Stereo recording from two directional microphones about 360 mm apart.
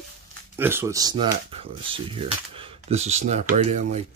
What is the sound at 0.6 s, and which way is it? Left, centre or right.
Speech, centre.